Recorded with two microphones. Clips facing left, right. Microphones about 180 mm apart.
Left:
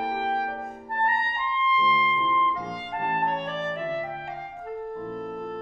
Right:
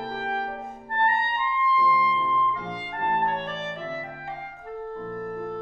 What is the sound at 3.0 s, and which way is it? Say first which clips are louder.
Clarinet: right 2 dB; 10° left (ahead or behind).